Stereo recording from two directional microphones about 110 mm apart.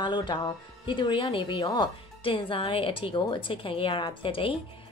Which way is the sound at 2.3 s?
50° left (ahead or behind).